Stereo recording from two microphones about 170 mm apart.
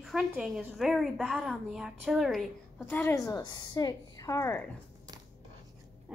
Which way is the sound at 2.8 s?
10° left (ahead or behind).